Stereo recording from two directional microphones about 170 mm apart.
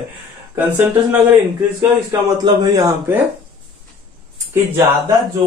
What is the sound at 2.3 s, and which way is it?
Speech, 25° right (ahead or behind).